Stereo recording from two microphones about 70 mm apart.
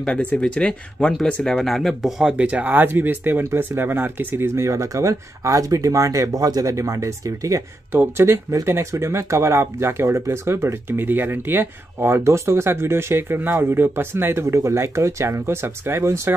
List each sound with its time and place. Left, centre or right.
0.0 s speech: centre
2.3 s speech: centre
4.6 s speech: right
7.9 s speech: right